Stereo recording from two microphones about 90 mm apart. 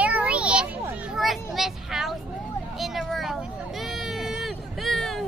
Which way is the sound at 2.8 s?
Centre (ahead or behind).